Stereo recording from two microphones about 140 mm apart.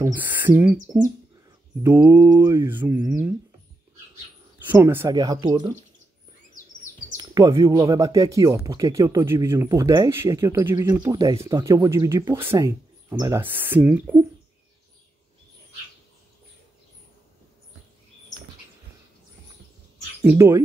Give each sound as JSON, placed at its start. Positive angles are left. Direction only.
{"t": 0.0, "sound": "mantra", "side_deg": -10}
{"t": 1.8, "sound": "mantra", "side_deg": -15}
{"t": 4.7, "sound": "speech", "side_deg": -25}
{"t": 7.2, "sound": "speech", "side_deg": -30}
{"t": 20.2, "sound": "speech", "side_deg": -20}